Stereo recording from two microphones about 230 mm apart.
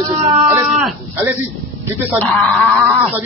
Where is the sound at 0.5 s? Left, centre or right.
Centre.